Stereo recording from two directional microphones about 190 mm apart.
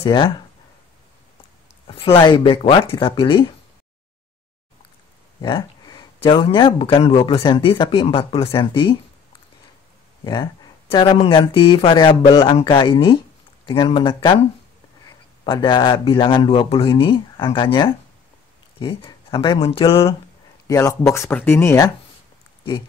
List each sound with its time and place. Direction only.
0.0 s speech: 25° left (ahead or behind)
1.9 s speech: 30° left (ahead or behind)
5.4 s speech: 25° left (ahead or behind)
10.2 s speech: 20° left (ahead or behind)
20.6 s speech: 15° left (ahead or behind)